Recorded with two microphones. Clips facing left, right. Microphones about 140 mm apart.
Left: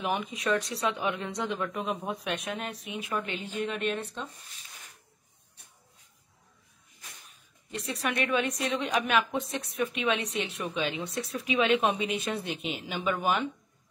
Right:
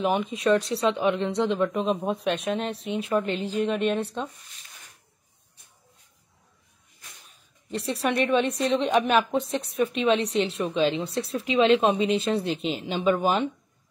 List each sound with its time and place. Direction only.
0.0 s a woman's voice: 25° right (ahead or behind)
3.7 s speech: centre (ahead or behind)
7.7 s a woman's voice: 30° right (ahead or behind)